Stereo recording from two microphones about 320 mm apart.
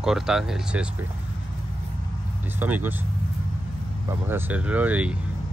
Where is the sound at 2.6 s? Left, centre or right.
Centre.